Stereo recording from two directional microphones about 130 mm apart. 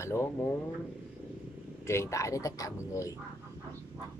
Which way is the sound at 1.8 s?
20° left (ahead or behind).